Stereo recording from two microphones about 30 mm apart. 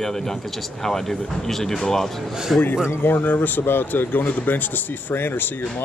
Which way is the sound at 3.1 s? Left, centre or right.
Left.